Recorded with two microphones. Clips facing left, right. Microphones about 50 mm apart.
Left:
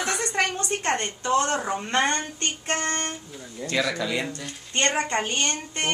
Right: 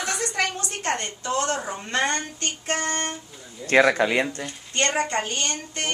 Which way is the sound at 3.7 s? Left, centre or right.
Right.